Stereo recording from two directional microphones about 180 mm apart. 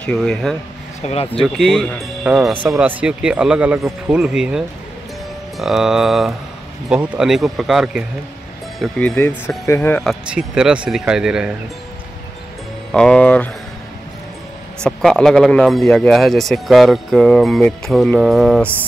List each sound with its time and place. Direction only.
0.0 s a man's voice: 5° left (ahead or behind)
1.0 s speech: 35° left (ahead or behind)
1.4 s a man's voice: centre (ahead or behind)
10.0 s a man's voice: 5° right (ahead or behind)
12.9 s a man's voice: 5° left (ahead or behind)
14.8 s a man's voice: centre (ahead or behind)